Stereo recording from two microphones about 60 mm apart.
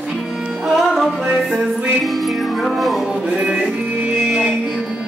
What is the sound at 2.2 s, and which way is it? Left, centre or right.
Music, centre.